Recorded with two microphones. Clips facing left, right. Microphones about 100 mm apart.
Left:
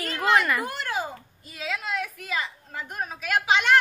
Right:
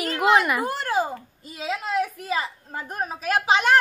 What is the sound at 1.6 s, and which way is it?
A woman's voice, 30° right (ahead or behind).